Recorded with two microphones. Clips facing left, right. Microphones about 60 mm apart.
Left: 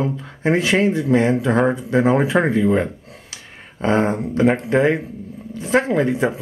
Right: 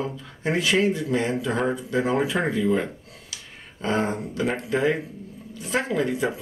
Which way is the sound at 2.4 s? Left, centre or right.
Left.